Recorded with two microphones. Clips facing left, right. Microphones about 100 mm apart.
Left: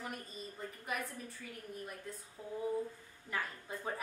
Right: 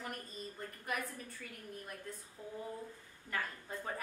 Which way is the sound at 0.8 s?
Centre (ahead or behind).